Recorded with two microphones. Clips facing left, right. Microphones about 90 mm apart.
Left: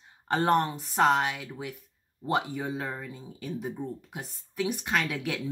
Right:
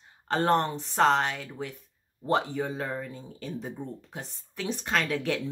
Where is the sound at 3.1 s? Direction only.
15° left (ahead or behind).